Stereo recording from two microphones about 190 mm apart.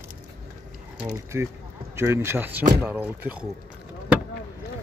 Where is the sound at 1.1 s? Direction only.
15° right (ahead or behind).